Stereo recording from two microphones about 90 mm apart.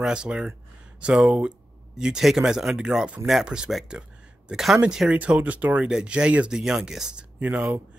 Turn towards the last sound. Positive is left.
turn(degrees=-15)  # may be behind; listen again after turning